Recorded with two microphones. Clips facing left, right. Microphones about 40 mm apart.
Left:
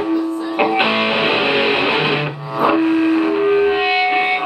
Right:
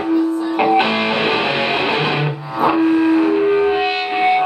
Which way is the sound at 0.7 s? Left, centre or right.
Centre.